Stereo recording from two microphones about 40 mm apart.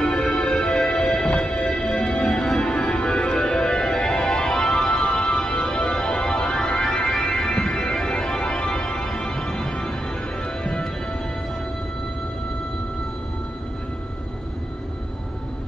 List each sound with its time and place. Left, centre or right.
0.0 s music: centre
7.6 s organ: centre
9.1 s music: left